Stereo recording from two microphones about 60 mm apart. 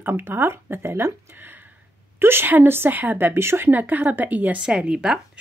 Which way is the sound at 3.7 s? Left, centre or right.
Right.